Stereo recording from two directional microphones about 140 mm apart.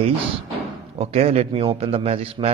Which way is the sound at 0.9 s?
45° right (ahead or behind).